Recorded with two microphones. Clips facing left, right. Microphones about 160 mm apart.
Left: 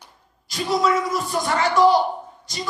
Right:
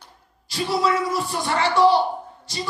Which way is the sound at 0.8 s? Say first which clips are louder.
Left 1 dB; 30° right (ahead or behind).